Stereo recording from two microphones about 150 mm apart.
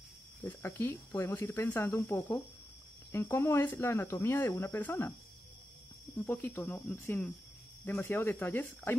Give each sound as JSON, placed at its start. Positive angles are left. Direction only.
{"t": 0.4, "sound": "speech", "side_deg": 15}
{"t": 6.2, "sound": "speech", "side_deg": 10}